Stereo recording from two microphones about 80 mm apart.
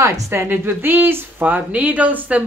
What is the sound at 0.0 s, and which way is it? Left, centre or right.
A woman's voice, right.